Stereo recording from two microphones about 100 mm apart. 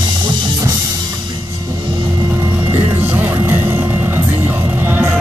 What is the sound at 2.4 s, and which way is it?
Music, 25° right (ahead or behind).